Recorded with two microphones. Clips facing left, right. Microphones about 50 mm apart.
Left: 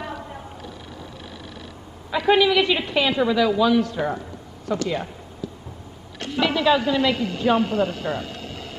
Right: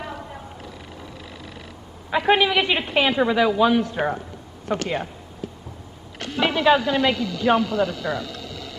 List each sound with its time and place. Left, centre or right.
2.0 s a man's voice: right
4.6 s speech: right
6.4 s a woman's voice: right
7.2 s a man's voice: left